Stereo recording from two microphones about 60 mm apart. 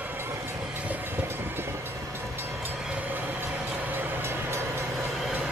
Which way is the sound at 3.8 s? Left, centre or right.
Right.